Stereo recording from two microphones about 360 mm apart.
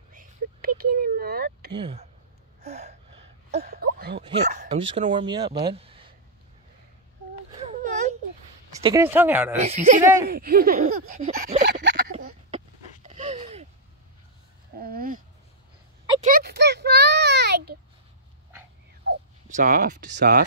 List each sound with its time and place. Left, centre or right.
0.1 s a sound: right
4.2 s speech: centre
7.5 s a sound: centre
8.8 s speech: centre
9.6 s speech: centre
10.3 s a sound: right
14.8 s dog: right
16.2 s a child's voice: right
19.0 s speech: right